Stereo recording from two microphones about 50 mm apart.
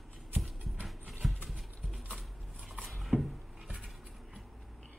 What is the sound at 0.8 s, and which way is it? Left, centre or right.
Clip-clop, centre.